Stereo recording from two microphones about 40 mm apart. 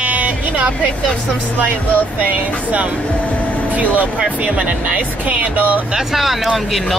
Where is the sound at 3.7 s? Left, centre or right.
Right.